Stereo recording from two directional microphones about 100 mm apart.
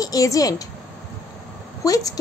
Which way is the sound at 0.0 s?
35° left (ahead or behind).